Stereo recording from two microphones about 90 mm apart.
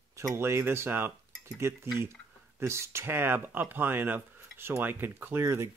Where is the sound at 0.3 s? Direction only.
30° right (ahead or behind).